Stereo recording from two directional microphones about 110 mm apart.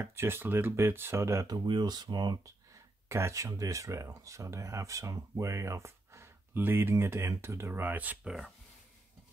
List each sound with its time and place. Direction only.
0.0 s speech: 20° right (ahead or behind)
1.7 s speech: 40° right (ahead or behind)
3.1 s speech: 25° right (ahead or behind)